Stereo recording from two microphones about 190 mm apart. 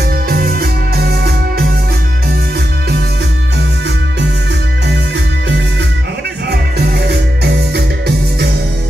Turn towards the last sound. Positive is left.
turn(degrees=-60)  # may be behind; listen again after turning